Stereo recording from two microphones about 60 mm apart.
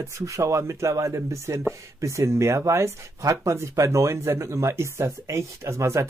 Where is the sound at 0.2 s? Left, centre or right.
Right.